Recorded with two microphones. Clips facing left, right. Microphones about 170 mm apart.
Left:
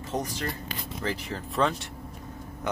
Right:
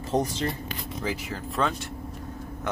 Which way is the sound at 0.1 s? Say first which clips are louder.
Right 6 dB; 30° right (ahead or behind).